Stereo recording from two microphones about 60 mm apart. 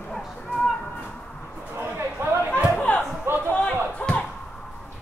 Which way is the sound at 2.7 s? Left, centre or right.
Left.